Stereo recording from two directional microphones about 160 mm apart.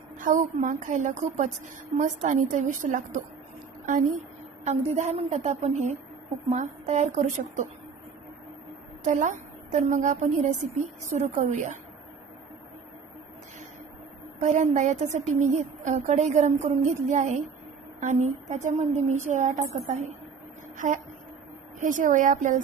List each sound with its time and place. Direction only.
0.2 s a woman's voice: 50° right (ahead or behind)
4.6 s a woman's voice: 45° right (ahead or behind)
9.0 s a woman's voice: 50° right (ahead or behind)
14.4 s a woman's voice: 45° right (ahead or behind)
20.7 s a woman's voice: 50° right (ahead or behind)